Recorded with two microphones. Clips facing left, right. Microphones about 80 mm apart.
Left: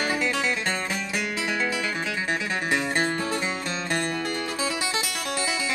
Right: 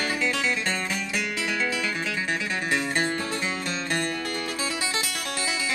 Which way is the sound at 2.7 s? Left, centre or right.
Left.